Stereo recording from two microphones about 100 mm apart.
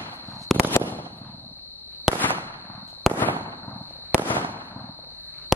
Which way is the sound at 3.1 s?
20° left (ahead or behind).